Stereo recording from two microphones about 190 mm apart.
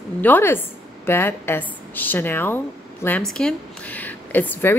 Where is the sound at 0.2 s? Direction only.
10° left (ahead or behind).